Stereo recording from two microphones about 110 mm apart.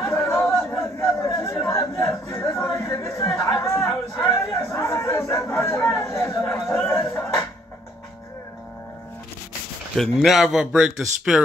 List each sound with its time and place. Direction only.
0.0 s chatter: 25° left (ahead or behind)
3.4 s a sound: 25° left (ahead or behind)
6.8 s music: 20° left (ahead or behind)
9.9 s speech: centre (ahead or behind)